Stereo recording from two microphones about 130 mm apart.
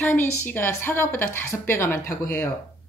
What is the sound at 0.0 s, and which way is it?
Speech, 15° left (ahead or behind).